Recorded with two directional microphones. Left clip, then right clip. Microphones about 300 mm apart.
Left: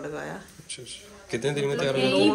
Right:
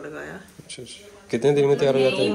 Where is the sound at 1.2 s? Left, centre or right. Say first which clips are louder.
Right 9 dB; centre.